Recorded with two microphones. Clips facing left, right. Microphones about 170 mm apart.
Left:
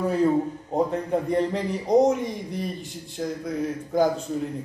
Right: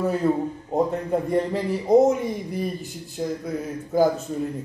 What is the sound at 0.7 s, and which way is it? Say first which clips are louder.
A man's voice: right 5 dB; centre (ahead or behind).